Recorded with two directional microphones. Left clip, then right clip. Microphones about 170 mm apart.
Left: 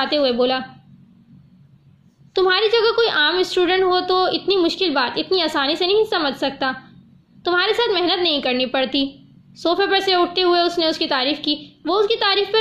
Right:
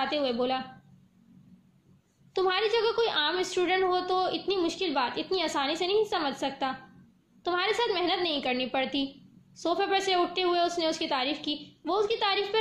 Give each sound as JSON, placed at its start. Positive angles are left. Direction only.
{"t": 0.0, "sound": "a woman's voice", "side_deg": 30}
{"t": 2.3, "sound": "a woman's voice", "side_deg": 30}